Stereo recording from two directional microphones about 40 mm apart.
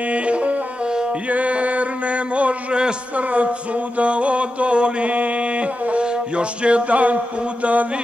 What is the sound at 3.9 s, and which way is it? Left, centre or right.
Music, right.